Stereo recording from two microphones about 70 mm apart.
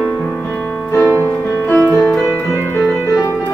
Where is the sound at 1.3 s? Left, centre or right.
Left.